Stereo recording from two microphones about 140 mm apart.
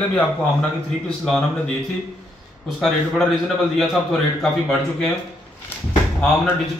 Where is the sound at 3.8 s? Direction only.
5° left (ahead or behind).